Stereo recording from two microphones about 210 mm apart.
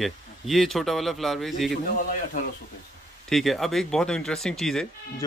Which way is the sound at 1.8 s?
40° left (ahead or behind).